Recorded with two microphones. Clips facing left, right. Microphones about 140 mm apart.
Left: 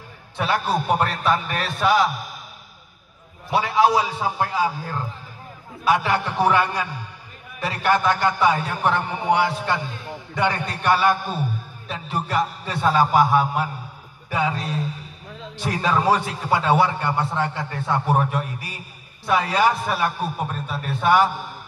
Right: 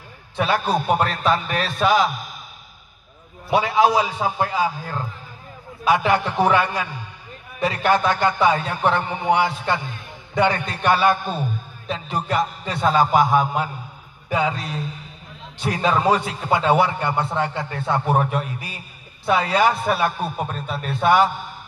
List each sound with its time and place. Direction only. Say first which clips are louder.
0.4 s a man's voice: right 2 dB; 20° right (ahead or behind)
3.4 s a man's voice: right 1 dB; 20° right (ahead or behind)
6.0 s a man's voice: right 2 dB; 15° right (ahead or behind)